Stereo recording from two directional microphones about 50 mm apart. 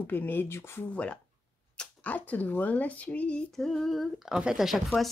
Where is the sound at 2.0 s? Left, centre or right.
Left.